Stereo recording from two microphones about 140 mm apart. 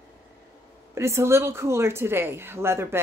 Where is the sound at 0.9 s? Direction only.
20° right (ahead or behind).